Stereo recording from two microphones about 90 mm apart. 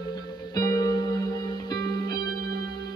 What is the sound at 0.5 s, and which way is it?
Music, 45° left (ahead or behind).